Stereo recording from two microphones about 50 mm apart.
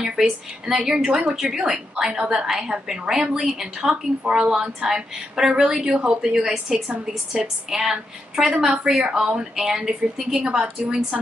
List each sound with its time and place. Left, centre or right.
0.0 s a woman's voice: centre
1.4 s a woman's voice: centre